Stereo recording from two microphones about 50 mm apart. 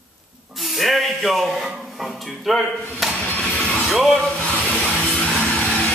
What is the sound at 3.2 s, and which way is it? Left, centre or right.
Music, left.